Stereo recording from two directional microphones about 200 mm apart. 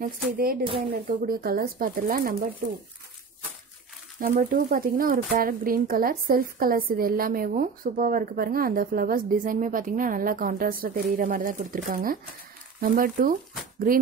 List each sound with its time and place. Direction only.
0.0 s speech: 45° right (ahead or behind)
0.7 s speech: 25° right (ahead or behind)
1.2 s speech: 45° right (ahead or behind)
4.2 s speech: 45° right (ahead or behind)